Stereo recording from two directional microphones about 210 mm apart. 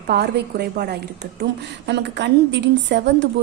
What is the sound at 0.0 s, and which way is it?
A woman's voice, 50° right (ahead or behind).